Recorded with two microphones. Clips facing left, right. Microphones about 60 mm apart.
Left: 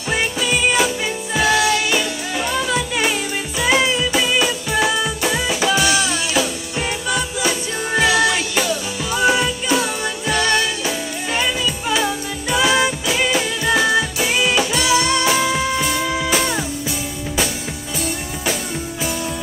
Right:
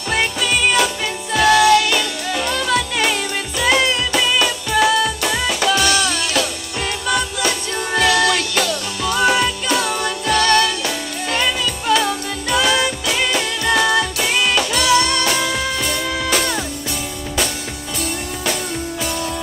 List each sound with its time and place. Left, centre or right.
0.1 s music: centre